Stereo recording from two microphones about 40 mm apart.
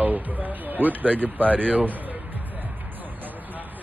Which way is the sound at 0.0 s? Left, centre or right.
Right.